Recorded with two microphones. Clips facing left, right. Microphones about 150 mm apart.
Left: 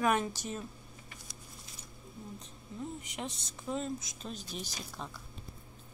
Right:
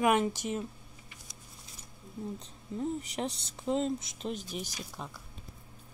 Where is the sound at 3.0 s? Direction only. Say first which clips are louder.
Right 6 dB; 30° right (ahead or behind); by 5.1 s 10° right (ahead or behind).